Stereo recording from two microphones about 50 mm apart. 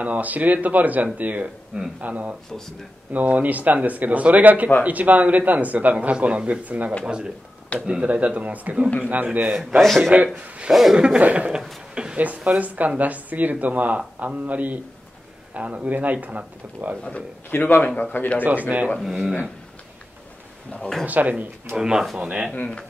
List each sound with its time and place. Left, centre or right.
0.0 s speech: right
7.1 s speech: centre
9.8 s speech: centre
10.1 s speech: right
10.7 s speech: centre
11.0 s speech: centre
11.9 s a sound: centre
12.4 s speech: right
17.5 s a man's voice: left
17.8 s a man's voice: left
18.4 s speech: right
18.9 s speech: centre
21.0 s speech: right
21.7 s speech: centre